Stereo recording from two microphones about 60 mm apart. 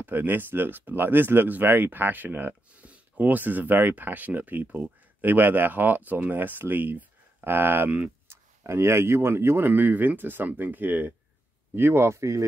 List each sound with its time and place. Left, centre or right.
0.0 s speech: right
8.3 s speech: right